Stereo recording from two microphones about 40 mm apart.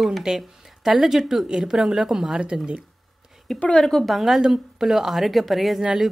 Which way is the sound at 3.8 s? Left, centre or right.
Centre.